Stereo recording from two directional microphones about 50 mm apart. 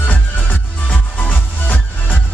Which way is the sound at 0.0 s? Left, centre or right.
Left.